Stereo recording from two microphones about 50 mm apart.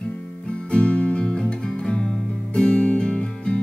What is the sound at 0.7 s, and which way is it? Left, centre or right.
Music, centre.